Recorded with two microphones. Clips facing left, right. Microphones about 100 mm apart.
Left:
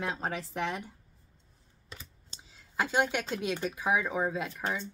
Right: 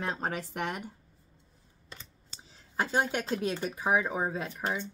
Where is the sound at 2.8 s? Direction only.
40° right (ahead or behind).